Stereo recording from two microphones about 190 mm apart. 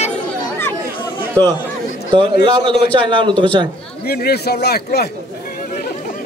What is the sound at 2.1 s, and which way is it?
A man's voice, 25° right (ahead or behind).